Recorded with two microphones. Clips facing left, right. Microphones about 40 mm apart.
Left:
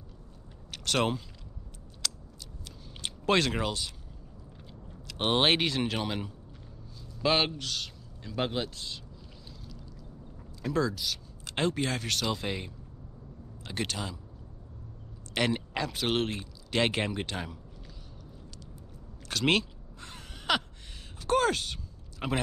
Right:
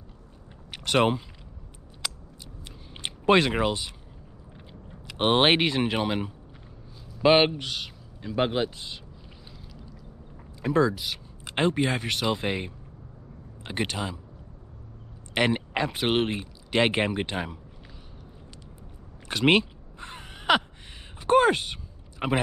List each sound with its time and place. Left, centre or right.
0.7 s a sound: right
2.0 s scissors: centre
2.6 s a sound: right
4.6 s a man's voice: right
10.6 s speech: right
15.3 s speech: right
19.2 s gasp: right
21.2 s speech: right